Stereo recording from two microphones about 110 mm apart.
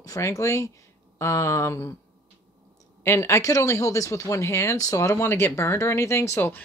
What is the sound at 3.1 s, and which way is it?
Speech, 25° left (ahead or behind).